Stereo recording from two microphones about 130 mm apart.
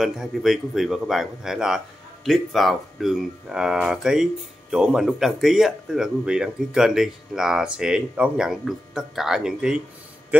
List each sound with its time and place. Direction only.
0.0 s speech: 5° right (ahead or behind)